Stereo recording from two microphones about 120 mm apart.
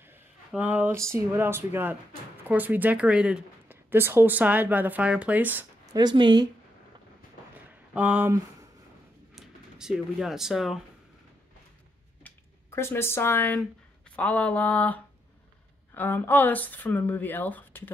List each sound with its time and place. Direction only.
0.5 s speech: 15° right (ahead or behind)
0.9 s speech: 25° right (ahead or behind)
5.9 s speech: 40° right (ahead or behind)
7.9 s speech: 15° right (ahead or behind)
9.3 s speech: 5° right (ahead or behind)
12.2 s a sound: 15° left (ahead or behind)
13.6 s speech: 10° left (ahead or behind)